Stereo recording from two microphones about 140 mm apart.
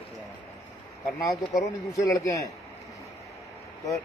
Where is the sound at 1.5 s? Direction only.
25° left (ahead or behind).